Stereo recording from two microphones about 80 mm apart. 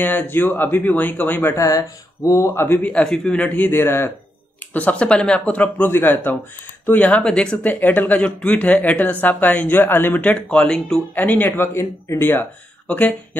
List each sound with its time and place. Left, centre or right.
0.0 s speech: left
1.6 s speech: left
2.8 s speech: centre
4.7 s speech: centre
11.1 s speech: left